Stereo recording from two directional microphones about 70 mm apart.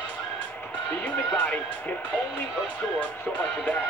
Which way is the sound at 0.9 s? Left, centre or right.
Left.